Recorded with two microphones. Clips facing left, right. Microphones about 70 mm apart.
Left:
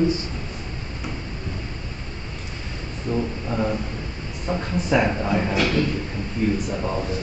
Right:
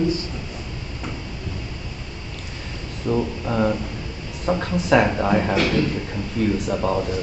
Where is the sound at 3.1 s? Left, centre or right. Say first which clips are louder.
Right 3 dB; right.